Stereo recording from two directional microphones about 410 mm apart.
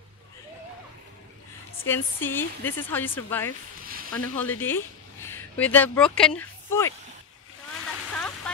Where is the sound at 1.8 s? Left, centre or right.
Centre.